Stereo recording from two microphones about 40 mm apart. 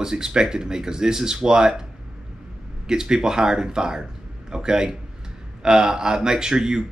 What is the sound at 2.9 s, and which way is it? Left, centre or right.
A man's voice, centre.